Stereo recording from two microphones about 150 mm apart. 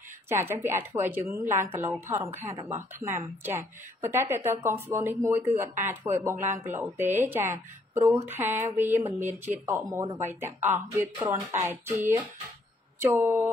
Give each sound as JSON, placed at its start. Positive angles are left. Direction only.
{"t": 0.3, "sound": "speech", "side_deg": -15}
{"t": 7.9, "sound": "a sound", "side_deg": -15}
{"t": 8.3, "sound": "speech", "side_deg": -15}